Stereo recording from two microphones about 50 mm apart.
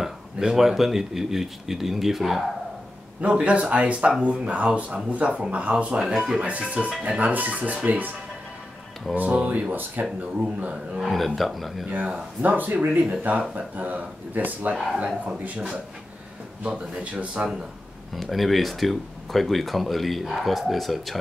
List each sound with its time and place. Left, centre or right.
0.0 s speech: centre
3.2 s speech: right
5.9 s speech: centre
6.6 s speech: right
9.1 s speech: right
10.4 s speech: right
11.0 s speech: centre
12.4 s speech: right
13.7 s speech: right
18.1 s speech: centre